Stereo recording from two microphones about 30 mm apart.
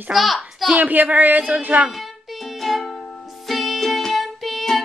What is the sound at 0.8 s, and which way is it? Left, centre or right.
Speech, right.